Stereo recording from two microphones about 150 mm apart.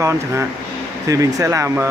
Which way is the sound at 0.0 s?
20° right (ahead or behind).